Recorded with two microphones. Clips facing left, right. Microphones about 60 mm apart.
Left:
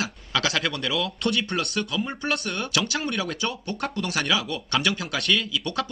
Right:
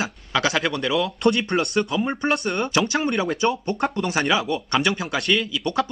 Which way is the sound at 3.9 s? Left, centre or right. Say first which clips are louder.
Right 2 dB; right.